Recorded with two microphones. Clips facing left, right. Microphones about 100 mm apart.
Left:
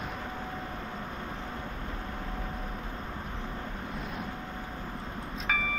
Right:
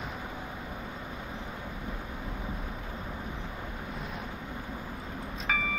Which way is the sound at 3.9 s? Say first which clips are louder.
Left 1 dB; centre (ahead or behind).